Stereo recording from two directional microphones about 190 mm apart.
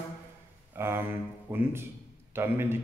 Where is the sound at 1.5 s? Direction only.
10° right (ahead or behind).